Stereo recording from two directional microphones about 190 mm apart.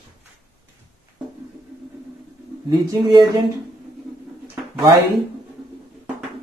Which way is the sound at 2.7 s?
20° right (ahead or behind).